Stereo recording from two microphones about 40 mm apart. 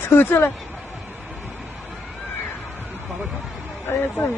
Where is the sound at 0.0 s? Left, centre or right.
Left.